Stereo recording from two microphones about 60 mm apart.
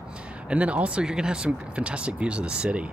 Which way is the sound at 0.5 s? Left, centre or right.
Right.